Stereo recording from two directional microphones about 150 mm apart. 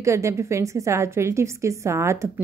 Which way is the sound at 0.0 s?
20° right (ahead or behind).